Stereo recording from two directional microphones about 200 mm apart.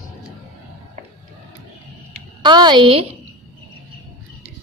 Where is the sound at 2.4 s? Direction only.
20° right (ahead or behind).